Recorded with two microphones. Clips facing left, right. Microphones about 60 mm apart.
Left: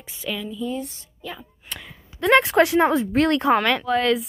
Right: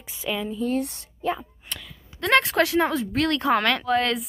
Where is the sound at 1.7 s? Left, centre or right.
Centre.